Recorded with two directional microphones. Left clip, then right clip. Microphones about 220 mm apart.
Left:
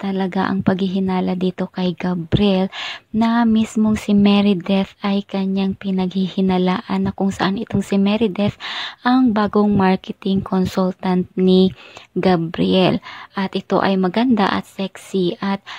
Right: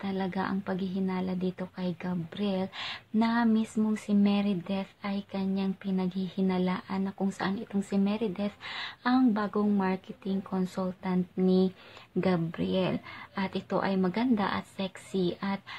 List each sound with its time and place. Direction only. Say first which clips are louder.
0.0 s speech: left 11 dB; 35° left (ahead or behind)